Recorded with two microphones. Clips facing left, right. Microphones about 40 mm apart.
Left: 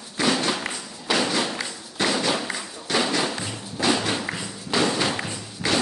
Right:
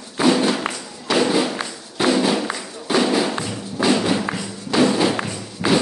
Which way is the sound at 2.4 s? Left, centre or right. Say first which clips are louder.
Right 4 dB; centre.